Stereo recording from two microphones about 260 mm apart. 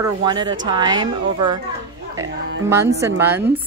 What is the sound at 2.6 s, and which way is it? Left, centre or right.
Speech, centre.